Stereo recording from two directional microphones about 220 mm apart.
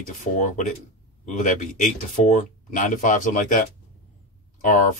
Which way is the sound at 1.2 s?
35° left (ahead or behind).